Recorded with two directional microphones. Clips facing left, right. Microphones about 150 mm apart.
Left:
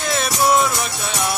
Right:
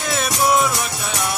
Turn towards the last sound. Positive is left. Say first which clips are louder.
# left 1 dB
turn(degrees=-5)  # may be behind; listen again after turning